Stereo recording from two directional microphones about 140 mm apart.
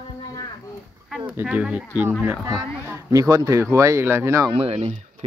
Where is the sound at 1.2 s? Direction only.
15° right (ahead or behind).